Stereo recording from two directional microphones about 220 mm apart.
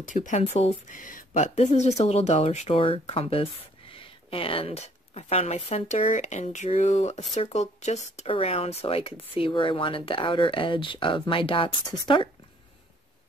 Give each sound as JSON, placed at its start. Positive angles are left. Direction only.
{"t": 0.0, "sound": "speech", "side_deg": 35}